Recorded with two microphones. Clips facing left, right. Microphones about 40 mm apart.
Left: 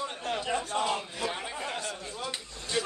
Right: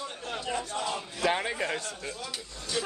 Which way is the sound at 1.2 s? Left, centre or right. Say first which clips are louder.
Right 9 dB; right.